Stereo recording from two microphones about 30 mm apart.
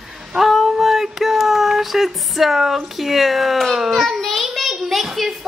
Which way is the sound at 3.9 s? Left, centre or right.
Centre.